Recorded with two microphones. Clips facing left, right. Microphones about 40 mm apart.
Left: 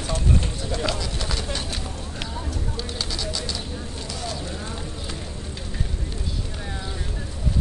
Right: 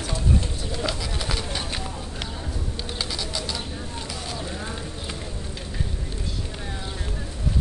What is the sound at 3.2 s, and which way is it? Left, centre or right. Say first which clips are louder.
Bird: left 1 dB; centre.